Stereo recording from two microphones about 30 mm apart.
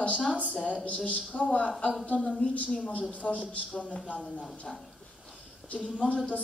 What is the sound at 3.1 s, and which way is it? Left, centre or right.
Speech, left.